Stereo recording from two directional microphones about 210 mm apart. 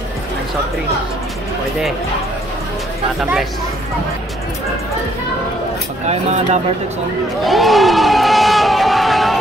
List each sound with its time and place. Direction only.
6.0 s speech: 30° right (ahead or behind)
7.4 s crowd: centre (ahead or behind)